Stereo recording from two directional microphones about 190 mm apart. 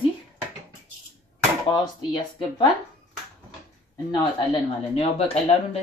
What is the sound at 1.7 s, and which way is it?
Speech, 25° left (ahead or behind).